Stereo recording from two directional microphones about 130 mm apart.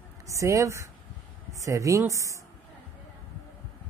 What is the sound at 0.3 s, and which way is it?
A woman's voice, 25° right (ahead or behind).